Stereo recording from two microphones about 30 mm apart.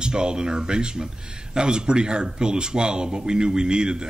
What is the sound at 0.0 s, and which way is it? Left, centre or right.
Speech, right.